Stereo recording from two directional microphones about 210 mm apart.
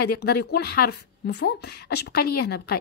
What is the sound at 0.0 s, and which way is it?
Speech, 50° left (ahead or behind).